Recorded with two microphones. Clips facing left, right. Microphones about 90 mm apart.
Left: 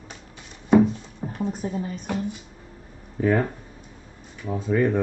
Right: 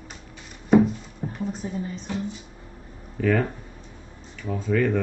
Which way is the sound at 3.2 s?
20° left (ahead or behind).